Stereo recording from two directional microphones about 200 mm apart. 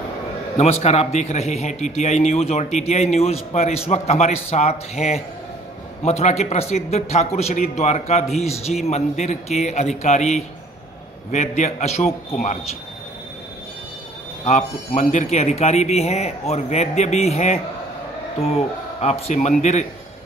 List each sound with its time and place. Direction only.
0.6 s a man's voice: 30° left (ahead or behind)
14.4 s a man's voice: 35° left (ahead or behind)